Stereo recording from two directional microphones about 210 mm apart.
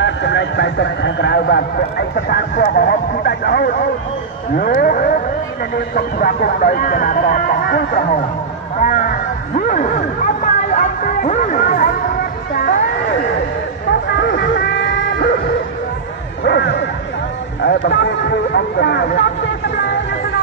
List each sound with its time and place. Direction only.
0.0 s speech: 55° left (ahead or behind)
8.8 s a sound: 40° left (ahead or behind)
12.5 s speech: 45° left (ahead or behind)
14.0 s a sound: 55° left (ahead or behind)
15.1 s bow-wow: 45° left (ahead or behind)
16.4 s music: 55° left (ahead or behind)
17.6 s speech: 55° left (ahead or behind)